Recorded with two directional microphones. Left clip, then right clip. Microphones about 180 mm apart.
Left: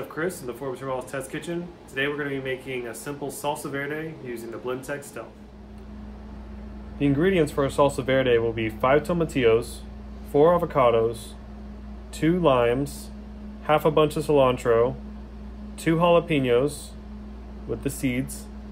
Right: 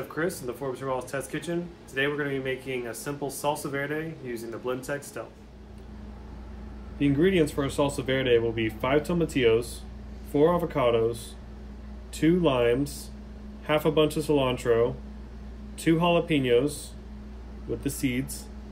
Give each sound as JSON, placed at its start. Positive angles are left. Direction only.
{"t": 0.1, "sound": "speech", "side_deg": -5}
{"t": 7.0, "sound": "speech", "side_deg": 25}
{"t": 12.2, "sound": "speech", "side_deg": 25}
{"t": 17.8, "sound": "speech", "side_deg": 25}